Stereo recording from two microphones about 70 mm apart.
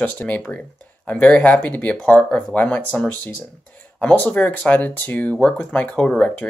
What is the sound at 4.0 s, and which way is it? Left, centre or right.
Speech, centre.